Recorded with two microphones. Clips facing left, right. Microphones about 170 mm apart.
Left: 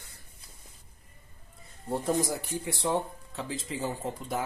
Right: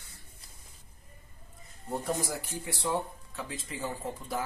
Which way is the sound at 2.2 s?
20° left (ahead or behind).